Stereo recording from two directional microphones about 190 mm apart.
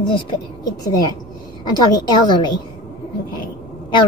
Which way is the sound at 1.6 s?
20° left (ahead or behind).